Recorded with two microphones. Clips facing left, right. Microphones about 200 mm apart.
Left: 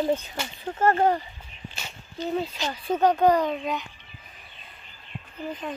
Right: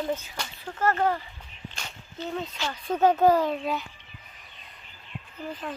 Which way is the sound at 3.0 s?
5° right (ahead or behind).